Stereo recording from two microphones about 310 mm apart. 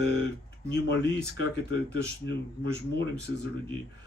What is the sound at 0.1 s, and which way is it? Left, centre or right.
Speech, left.